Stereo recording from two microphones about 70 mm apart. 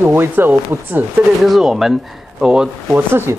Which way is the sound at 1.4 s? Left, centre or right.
Centre.